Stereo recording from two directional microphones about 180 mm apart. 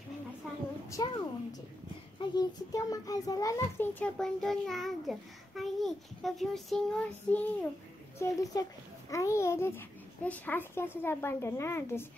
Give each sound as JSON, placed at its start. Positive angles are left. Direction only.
{"t": 0.8, "sound": "a child's voice", "side_deg": 20}
{"t": 8.2, "sound": "a child's voice", "side_deg": 20}